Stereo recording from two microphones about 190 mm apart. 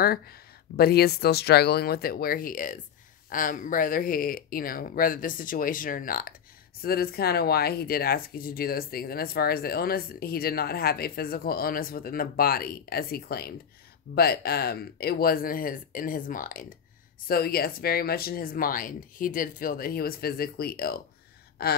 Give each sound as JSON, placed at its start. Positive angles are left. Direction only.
{"t": 0.7, "sound": "speech", "side_deg": 55}